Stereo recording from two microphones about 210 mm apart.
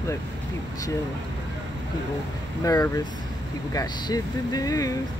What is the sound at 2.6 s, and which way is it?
Speech, 15° left (ahead or behind).